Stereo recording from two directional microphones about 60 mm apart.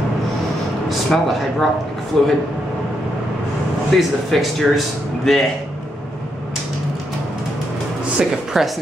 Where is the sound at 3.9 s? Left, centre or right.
Centre.